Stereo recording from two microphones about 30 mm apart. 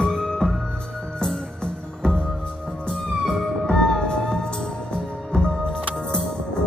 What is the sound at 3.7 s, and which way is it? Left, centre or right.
Music, left.